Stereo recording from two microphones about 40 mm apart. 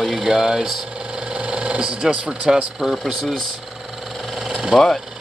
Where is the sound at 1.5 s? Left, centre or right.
Right.